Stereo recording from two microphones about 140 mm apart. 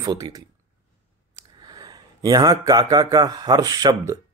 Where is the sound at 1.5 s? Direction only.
30° right (ahead or behind).